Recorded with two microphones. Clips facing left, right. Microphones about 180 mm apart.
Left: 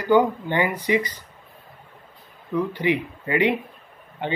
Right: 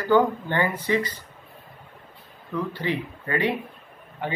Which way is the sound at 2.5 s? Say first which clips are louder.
Left 5 dB; 15° left (ahead or behind).